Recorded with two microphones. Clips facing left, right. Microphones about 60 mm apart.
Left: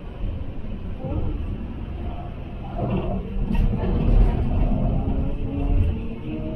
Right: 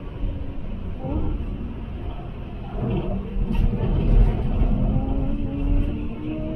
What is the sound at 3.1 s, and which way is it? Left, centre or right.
Vehicle, centre.